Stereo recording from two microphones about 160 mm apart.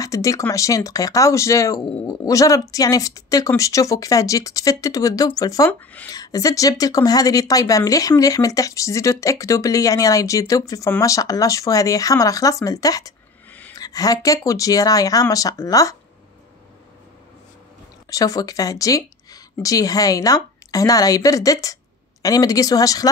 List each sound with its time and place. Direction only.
0.0 s speech: 20° left (ahead or behind)
13.5 s a sound: 10° left (ahead or behind)
13.7 s speech: 25° left (ahead or behind)
18.1 s speech: 20° left (ahead or behind)